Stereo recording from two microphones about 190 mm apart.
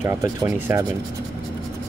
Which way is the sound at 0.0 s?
15° right (ahead or behind).